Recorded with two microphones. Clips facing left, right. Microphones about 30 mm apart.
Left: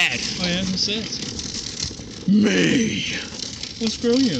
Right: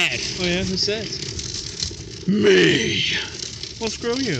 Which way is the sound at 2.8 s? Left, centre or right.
Right.